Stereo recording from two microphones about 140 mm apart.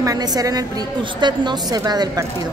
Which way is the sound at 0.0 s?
25° right (ahead or behind).